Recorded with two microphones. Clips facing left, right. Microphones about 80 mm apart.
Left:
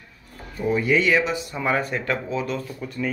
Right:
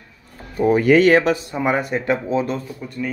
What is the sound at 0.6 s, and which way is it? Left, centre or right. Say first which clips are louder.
Speech: right 7 dB; right.